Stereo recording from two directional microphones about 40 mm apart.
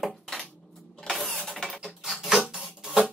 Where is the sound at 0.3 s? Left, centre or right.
Centre.